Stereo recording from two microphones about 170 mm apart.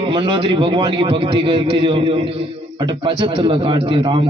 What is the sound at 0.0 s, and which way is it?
A man's voice, 30° right (ahead or behind).